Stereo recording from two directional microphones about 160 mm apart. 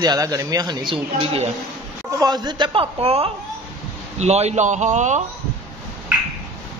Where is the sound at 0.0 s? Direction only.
25° right (ahead or behind).